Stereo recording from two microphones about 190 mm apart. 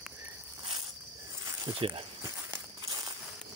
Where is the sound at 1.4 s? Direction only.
15° right (ahead or behind).